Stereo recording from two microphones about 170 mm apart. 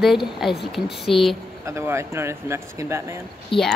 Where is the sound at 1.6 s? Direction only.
15° right (ahead or behind).